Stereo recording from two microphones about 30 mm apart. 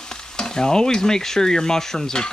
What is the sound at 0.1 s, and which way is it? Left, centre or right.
Stir, left.